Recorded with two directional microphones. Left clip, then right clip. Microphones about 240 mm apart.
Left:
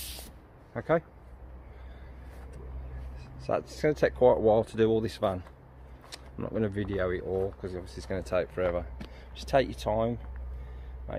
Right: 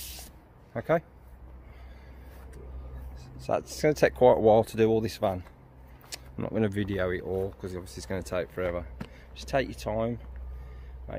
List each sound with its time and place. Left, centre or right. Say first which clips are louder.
0.7 s a man's voice: right 1 dB; right
3.3 s speech: right 1 dB; centre